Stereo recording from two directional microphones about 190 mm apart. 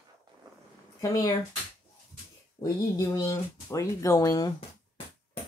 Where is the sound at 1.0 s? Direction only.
15° left (ahead or behind).